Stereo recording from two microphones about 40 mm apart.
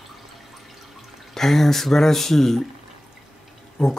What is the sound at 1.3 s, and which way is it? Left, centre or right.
Speech, centre.